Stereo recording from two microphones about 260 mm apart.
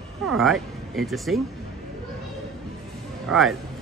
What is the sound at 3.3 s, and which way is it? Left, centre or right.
Speech, centre.